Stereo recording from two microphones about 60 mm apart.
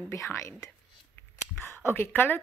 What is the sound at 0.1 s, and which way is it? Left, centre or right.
Speech, left.